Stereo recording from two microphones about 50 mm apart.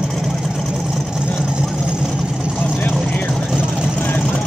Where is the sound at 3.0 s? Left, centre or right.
Left.